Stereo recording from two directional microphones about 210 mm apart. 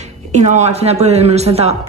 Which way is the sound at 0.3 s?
35° right (ahead or behind).